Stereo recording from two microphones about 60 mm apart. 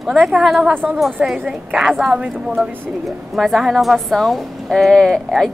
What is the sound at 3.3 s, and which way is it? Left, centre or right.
A woman's voice, centre.